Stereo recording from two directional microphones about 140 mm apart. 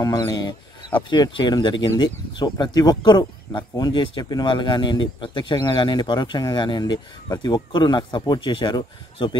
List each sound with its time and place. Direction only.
0.0 s speech: 30° left (ahead or behind)